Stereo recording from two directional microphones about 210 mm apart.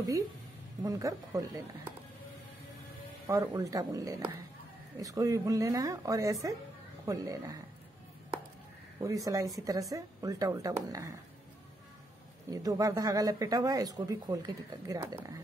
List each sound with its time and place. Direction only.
0.8 s speech: 15° right (ahead or behind)
3.3 s speech: 15° right (ahead or behind)
9.0 s speech: 15° right (ahead or behind)
12.4 s speech: 15° right (ahead or behind)